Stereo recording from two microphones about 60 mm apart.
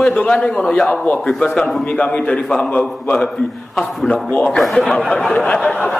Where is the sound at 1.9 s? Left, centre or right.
Centre.